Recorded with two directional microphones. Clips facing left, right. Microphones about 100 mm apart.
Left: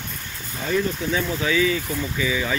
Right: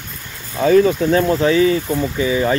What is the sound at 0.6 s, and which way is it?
Speech, 75° right (ahead or behind).